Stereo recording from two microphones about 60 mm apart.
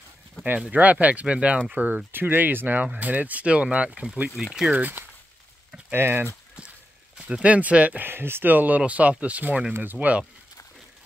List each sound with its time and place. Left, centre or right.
0.7 s speech: right
2.1 s speech: right; by 4.5 s centre
4.7 s speech: right
5.9 s speech: right
7.2 s speech: centre